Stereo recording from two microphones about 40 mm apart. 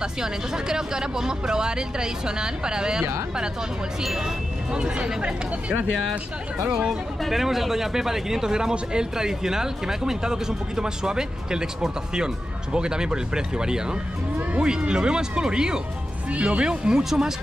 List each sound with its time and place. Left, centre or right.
0.0 s speech: centre
4.0 s speech: centre
4.7 s speech: right
7.2 s speech: centre
16.3 s speech: right
17.0 s speech: centre